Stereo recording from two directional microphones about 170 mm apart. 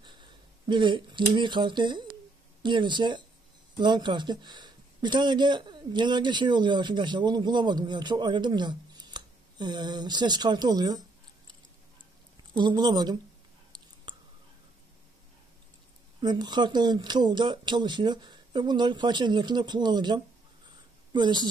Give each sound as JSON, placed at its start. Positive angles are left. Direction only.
{"t": 0.0, "sound": "speech", "side_deg": -30}
{"t": 12.5, "sound": "speech", "side_deg": -25}
{"t": 13.7, "sound": "a sound", "side_deg": -25}
{"t": 16.2, "sound": "speech", "side_deg": -25}